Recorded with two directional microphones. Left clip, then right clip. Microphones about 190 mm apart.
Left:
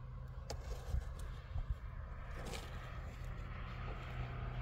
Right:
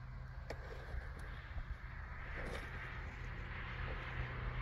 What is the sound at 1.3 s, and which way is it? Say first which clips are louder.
Vehicle: right 3 dB; 80° left.